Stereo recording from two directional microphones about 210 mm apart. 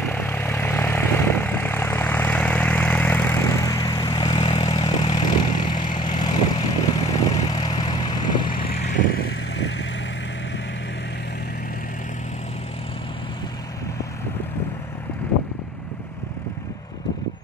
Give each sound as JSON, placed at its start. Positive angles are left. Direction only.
{"t": 0.0, "sound": "vehicle", "side_deg": 10}
{"t": 9.1, "sound": "vehicle", "side_deg": 50}